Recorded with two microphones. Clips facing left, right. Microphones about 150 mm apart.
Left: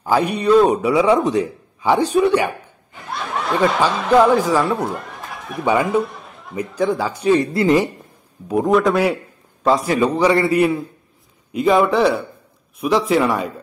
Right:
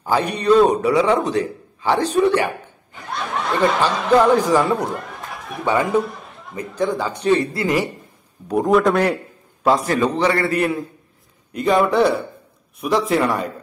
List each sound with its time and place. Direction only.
0.1 s a man's voice: 10° left (ahead or behind)
3.5 s a man's voice: 5° left (ahead or behind)
7.5 s a woman's voice: 25° left (ahead or behind)
8.5 s speech: centre (ahead or behind)
9.6 s a sound: centre (ahead or behind)
9.8 s a man's voice: 10° left (ahead or behind)